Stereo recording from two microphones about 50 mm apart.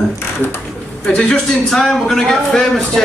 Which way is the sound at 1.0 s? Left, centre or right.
Centre.